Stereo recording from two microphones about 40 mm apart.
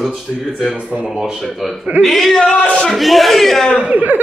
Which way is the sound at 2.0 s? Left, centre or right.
Centre.